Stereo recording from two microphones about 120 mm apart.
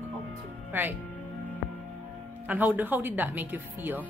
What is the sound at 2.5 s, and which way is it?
Speech, 15° right (ahead or behind).